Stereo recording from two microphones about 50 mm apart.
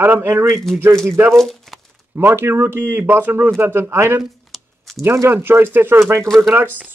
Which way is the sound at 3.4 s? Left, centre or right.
Right.